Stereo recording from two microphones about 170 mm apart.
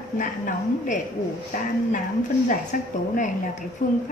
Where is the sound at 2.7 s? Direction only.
55° left (ahead or behind).